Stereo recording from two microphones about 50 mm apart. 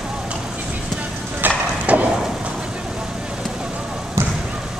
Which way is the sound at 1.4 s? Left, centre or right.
Right.